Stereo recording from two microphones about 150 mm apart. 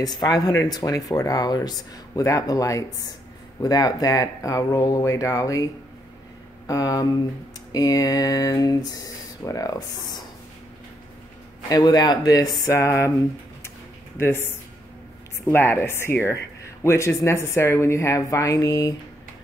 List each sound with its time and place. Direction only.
0.0 s speech: 25° left (ahead or behind)
6.7 s speech: 25° left (ahead or behind)
11.7 s speech: 25° left (ahead or behind)
14.1 s speech: 15° left (ahead or behind)